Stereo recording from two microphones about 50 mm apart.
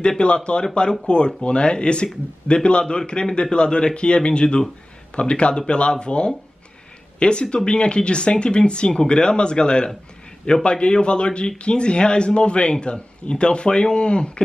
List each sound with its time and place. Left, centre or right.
0.2 s speech: left